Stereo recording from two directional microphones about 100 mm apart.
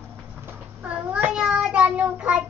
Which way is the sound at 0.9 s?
10° right (ahead or behind).